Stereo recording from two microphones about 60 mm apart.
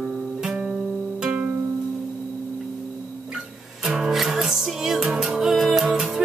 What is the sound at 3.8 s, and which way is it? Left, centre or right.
Music, centre.